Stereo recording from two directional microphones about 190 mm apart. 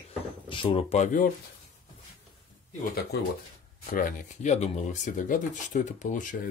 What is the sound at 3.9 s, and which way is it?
Speech, 40° left (ahead or behind).